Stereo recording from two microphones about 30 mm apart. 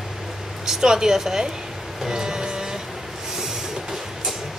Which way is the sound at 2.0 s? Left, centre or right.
Right.